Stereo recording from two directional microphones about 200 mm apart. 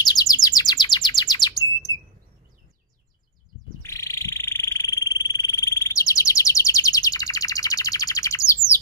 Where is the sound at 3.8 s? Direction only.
15° left (ahead or behind).